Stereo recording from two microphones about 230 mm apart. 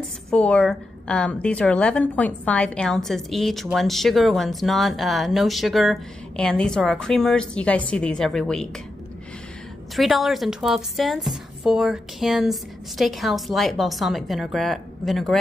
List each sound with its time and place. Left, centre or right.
0.3 s a woman's voice: centre
9.9 s a woman's voice: centre